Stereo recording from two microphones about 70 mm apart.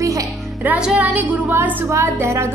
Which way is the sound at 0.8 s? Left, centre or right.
Centre.